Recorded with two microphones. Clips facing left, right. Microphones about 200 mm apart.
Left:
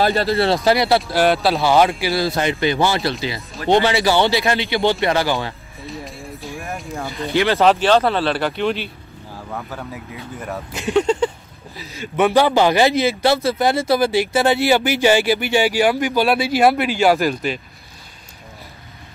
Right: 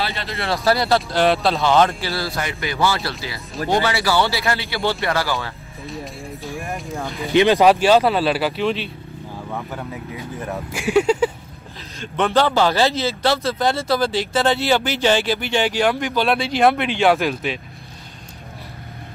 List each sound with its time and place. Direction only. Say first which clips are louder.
0.0 s speech: left 9 dB; 40° left (ahead or behind)
0.7 s speech: right 1 dB; 15° left (ahead or behind)
1.0 s a man's voice: left 1 dB; centre (ahead or behind); by 5.5 s 20° left (ahead or behind)
5.9 s speech: even; centre (ahead or behind)
7.3 s speech: right 2 dB; 15° right (ahead or behind); by 8.9 s centre (ahead or behind)
10.5 s speech: right 1 dB; 10° right (ahead or behind)
11.8 s speech: left 4 dB; 10° left (ahead or behind)